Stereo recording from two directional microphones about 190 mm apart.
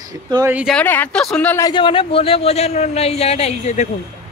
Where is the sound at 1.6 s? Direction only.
25° left (ahead or behind).